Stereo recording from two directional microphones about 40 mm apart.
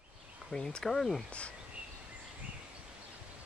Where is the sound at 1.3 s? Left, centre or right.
Left.